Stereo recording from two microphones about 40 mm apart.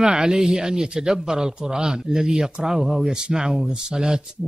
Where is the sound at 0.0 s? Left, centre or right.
Centre.